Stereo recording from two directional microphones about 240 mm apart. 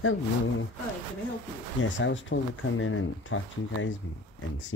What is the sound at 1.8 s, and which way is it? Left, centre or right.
Speech, left.